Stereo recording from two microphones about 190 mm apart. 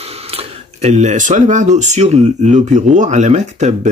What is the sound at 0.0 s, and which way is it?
Speech, 30° right (ahead or behind).